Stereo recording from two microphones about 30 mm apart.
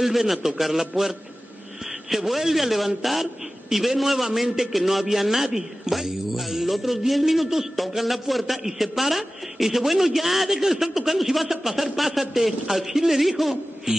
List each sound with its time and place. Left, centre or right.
0.0 s a woman's voice: centre
13.9 s music: centre